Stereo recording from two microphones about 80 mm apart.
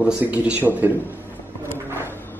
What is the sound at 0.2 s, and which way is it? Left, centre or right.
Speech, centre.